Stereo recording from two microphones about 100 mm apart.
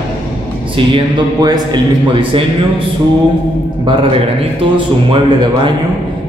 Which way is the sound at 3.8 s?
60° right (ahead or behind).